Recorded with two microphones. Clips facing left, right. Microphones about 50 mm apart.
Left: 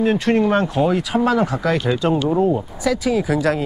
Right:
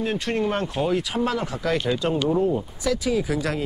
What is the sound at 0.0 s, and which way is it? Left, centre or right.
Speech, left.